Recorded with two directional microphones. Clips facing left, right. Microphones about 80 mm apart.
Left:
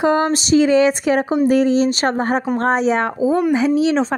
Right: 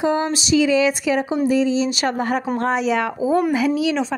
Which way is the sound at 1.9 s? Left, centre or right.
Left.